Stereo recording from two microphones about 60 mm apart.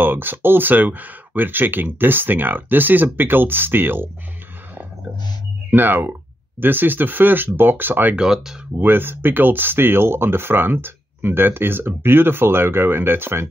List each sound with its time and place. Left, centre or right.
0.0 s speech: right
5.7 s speech: right
8.2 s speech: centre
8.7 s speech: right